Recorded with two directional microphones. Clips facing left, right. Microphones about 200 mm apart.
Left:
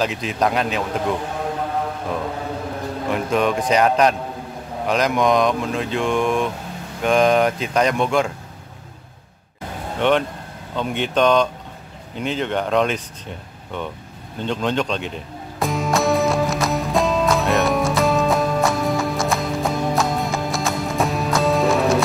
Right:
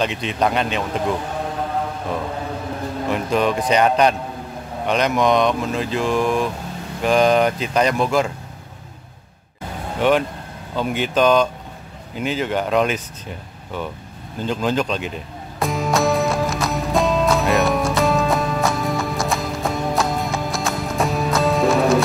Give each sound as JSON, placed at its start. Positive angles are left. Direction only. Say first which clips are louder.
{"t": 0.0, "sound": "speech", "louder": "even", "side_deg": 0}
{"t": 3.1, "sound": "speech", "louder": "even", "side_deg": 0}
{"t": 9.9, "sound": "speech", "louder": "right 1 dB", "side_deg": -5}
{"t": 15.6, "sound": "music", "louder": "right 1 dB", "side_deg": 0}